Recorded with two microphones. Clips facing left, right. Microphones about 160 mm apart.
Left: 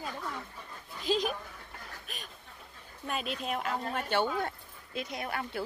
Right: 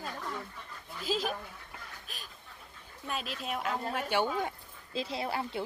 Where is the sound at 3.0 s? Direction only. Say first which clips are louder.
Left 2 dB; centre (ahead or behind).